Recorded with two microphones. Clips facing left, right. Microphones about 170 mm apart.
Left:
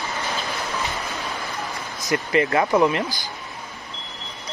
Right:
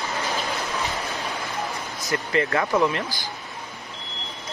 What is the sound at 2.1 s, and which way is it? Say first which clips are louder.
Speech: left 3 dB; 15° left (ahead or behind).